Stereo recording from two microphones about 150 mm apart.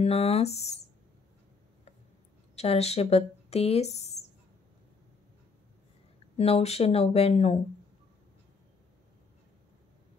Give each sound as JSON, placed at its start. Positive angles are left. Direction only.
{"t": 0.0, "sound": "speech", "side_deg": 45}
{"t": 2.5, "sound": "speech", "side_deg": 45}
{"t": 6.3, "sound": "speech", "side_deg": 45}